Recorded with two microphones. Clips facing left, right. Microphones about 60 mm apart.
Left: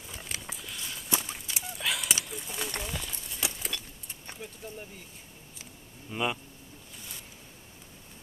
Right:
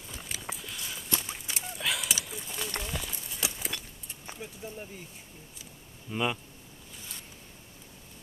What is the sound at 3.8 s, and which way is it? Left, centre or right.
Keys jangling, centre.